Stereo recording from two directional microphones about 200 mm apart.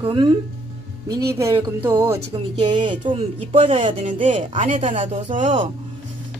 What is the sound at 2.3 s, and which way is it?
Speech, 25° right (ahead or behind).